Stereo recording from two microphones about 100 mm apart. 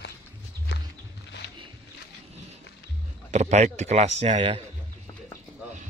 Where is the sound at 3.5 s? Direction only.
90° right.